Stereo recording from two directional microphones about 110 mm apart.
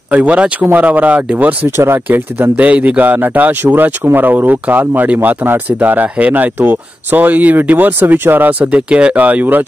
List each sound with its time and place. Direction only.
0.1 s speech: 10° right (ahead or behind)